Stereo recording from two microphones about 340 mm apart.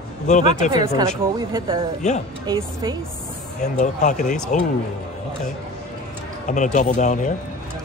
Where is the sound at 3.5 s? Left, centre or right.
Left.